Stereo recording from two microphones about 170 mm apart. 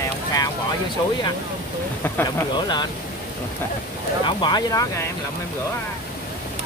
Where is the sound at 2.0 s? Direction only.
10° left (ahead or behind).